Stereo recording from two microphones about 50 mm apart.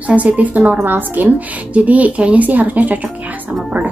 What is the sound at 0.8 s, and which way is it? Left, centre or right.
Speech, right.